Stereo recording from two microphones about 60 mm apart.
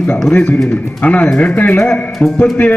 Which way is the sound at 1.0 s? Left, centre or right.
Left.